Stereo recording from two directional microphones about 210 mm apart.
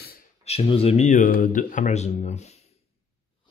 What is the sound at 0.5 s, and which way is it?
Speech, 30° left (ahead or behind).